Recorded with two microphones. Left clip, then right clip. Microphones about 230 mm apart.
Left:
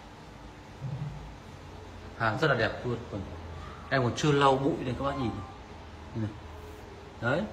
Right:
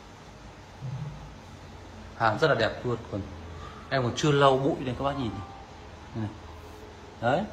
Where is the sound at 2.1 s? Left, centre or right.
Centre.